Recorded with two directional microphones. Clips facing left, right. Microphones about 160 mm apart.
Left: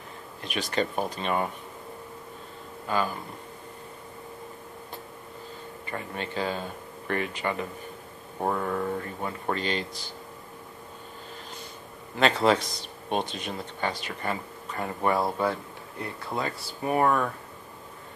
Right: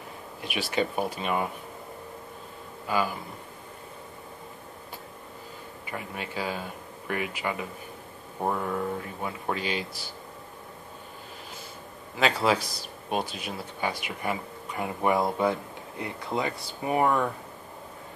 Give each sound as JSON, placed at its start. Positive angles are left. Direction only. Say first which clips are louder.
{"t": 0.4, "sound": "speech", "louder": "even", "side_deg": -10}
{"t": 2.9, "sound": "speech", "louder": "even", "side_deg": -10}
{"t": 5.9, "sound": "speech", "louder": "left 2 dB", "side_deg": -10}
{"t": 12.2, "sound": "speech", "louder": "left 2 dB", "side_deg": -5}